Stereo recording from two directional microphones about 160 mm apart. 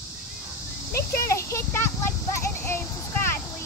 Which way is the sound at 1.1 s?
15° left (ahead or behind).